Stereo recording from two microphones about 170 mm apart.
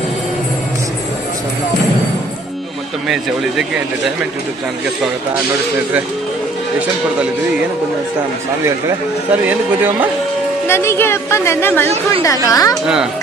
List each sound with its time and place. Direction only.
3.1 s speech: 5° right (ahead or behind)
9.3 s a man's voice: 10° right (ahead or behind)
10.7 s a woman's voice: 15° left (ahead or behind)
12.8 s speech: 5° right (ahead or behind)